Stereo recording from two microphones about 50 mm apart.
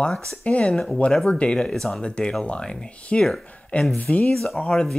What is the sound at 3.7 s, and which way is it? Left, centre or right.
Speech, left.